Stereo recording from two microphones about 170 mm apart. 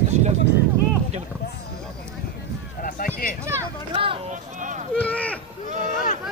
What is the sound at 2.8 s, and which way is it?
Run, 55° left (ahead or behind).